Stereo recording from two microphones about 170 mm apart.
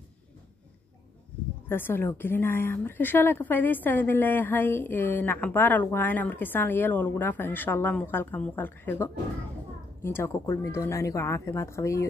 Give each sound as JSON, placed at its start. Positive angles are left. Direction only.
{"t": 1.7, "sound": "a woman's voice", "side_deg": 10}